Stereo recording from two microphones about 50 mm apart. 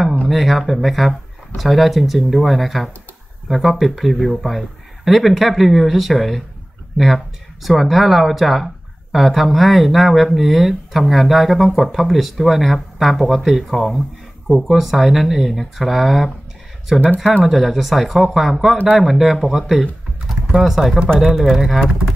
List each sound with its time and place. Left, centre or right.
0.3 s speech: centre
7.6 s speech: centre